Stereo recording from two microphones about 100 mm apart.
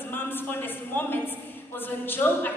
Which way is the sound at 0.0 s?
20° left (ahead or behind).